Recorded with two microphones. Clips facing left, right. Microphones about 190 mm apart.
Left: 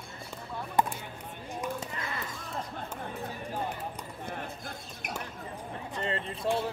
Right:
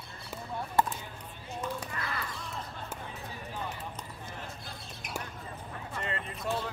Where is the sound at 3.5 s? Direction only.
45° left (ahead or behind).